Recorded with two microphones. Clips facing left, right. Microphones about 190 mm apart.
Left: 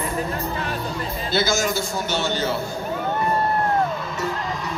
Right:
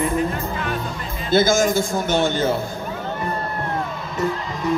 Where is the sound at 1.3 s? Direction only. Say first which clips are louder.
Right 6 dB; 50° right (ahead or behind).